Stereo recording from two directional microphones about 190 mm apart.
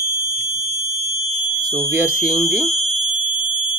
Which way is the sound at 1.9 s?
10° right (ahead or behind).